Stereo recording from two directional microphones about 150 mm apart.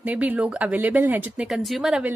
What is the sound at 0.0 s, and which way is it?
A woman's voice, 10° right (ahead or behind).